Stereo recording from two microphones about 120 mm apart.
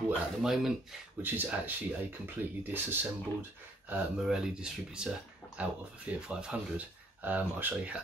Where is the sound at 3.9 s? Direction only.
5° right (ahead or behind).